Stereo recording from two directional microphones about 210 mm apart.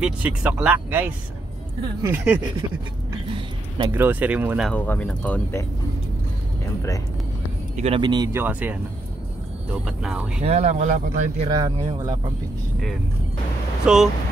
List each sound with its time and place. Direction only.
0.0 s speech: 5° right (ahead or behind)
3.3 s a sound: 25° right (ahead or behind)
3.9 s speech: 10° right (ahead or behind)
4.6 s speech: 10° left (ahead or behind)
7.7 s speech: 30° right (ahead or behind); by 10.4 s 5° right (ahead or behind)
10.4 s speech: 30° right (ahead or behind)
11.4 s speech: 20° right (ahead or behind)
13.9 s speech: 5° right (ahead or behind)